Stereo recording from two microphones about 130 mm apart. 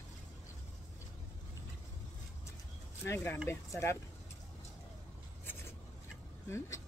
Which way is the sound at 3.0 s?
20° left (ahead or behind).